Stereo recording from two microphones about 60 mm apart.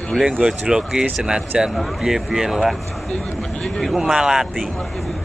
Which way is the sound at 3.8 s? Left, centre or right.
Centre.